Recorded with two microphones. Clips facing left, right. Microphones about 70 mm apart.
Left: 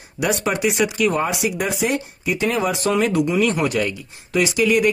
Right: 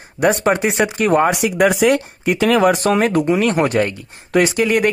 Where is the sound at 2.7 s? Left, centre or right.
Right.